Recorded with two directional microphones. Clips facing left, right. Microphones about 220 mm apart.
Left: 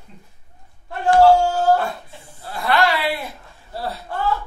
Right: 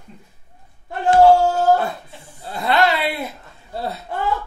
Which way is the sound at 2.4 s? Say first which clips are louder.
Right 1 dB; 20° right (ahead or behind).